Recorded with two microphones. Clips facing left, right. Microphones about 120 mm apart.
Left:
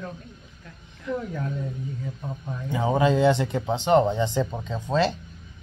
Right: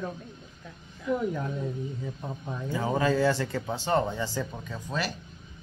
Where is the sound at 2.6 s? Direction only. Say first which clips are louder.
Left 4 dB; 20° left (ahead or behind).